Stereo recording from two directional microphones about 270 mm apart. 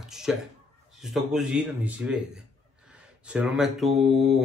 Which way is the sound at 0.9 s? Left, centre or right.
Centre.